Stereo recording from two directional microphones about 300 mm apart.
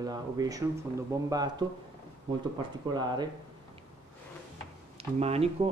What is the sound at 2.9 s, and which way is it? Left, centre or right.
Speech, centre.